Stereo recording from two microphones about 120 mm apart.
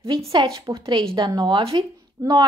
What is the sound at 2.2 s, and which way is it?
Speech, 30° right (ahead or behind).